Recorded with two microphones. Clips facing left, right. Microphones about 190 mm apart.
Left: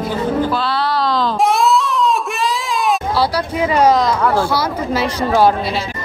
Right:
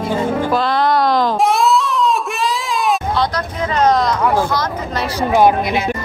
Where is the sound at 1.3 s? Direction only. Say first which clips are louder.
Even; centre (ahead or behind).